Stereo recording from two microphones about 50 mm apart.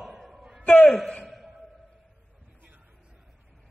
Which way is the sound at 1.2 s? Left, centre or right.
Centre.